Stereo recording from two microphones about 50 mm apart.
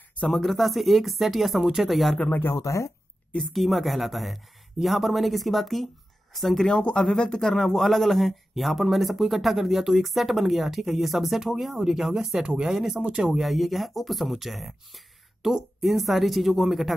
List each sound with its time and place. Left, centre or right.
0.3 s speech: centre
2.5 s speech: left
3.4 s speech: centre
6.7 s speech: centre
12.7 s speech: centre